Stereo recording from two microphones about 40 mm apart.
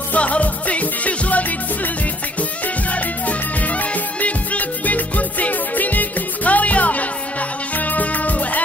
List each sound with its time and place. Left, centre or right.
0.1 s music: left
2.9 s music: left